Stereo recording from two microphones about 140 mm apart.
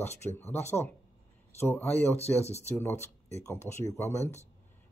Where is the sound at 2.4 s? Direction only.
50° left (ahead or behind).